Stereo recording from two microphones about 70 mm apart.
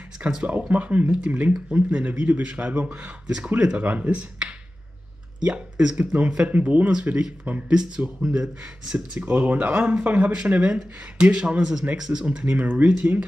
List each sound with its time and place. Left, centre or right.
0.2 s speech: centre